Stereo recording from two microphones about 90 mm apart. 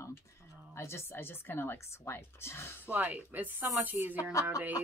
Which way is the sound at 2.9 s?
20° right (ahead or behind).